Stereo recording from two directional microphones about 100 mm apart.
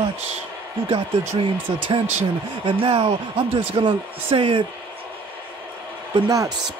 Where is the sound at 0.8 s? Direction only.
65° right (ahead or behind).